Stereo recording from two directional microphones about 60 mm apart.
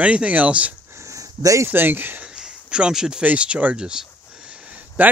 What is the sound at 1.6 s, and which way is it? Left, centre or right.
Speech, right.